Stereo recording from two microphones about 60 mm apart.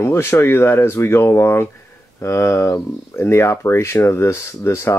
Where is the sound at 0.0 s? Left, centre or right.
Left.